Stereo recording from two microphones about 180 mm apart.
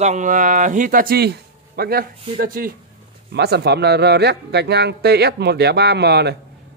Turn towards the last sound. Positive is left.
turn(degrees=-65)  # may be behind; listen again after turning